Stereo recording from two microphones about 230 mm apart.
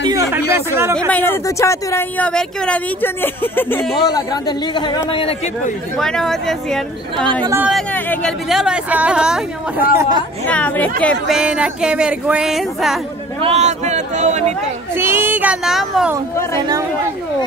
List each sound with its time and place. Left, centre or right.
0.7 s a child's voice: centre
1.1 s speech: centre
5.9 s speech: centre
7.4 s a child's voice: centre
7.7 s speech: centre
9.9 s a child's voice: centre
10.5 s speech: centre
13.4 s speech: right
15.0 s a child's voice: centre
16.5 s a child's voice: centre